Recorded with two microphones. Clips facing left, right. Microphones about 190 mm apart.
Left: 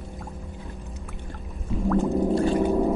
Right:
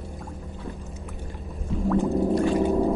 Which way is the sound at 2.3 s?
30° left (ahead or behind).